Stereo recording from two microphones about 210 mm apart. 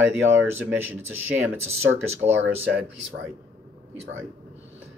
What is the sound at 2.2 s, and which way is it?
Speech, 15° right (ahead or behind).